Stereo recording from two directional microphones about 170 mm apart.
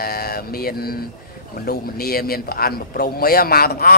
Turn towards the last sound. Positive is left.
turn(degrees=65)  # may be behind; listen again after turning